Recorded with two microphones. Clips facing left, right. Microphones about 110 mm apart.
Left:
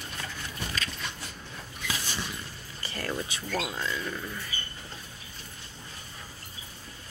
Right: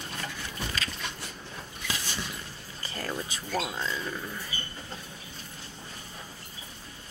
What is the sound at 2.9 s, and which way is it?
Speech, 10° right (ahead or behind).